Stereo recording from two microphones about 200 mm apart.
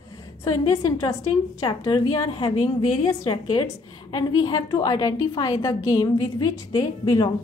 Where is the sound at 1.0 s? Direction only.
20° left (ahead or behind).